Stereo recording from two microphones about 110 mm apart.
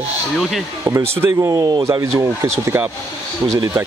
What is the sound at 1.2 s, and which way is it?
Speech, 30° right (ahead or behind).